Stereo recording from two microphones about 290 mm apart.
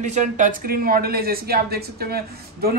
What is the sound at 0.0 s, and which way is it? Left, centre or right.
Speech, right.